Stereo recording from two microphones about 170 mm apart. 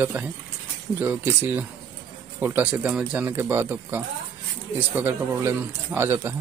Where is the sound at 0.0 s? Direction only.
10° right (ahead or behind).